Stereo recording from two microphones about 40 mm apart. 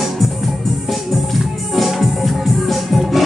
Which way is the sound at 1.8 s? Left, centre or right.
Centre.